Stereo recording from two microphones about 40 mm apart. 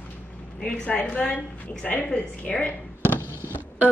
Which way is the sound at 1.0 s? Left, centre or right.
Left.